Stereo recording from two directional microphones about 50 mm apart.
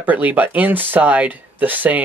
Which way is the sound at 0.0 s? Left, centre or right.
Right.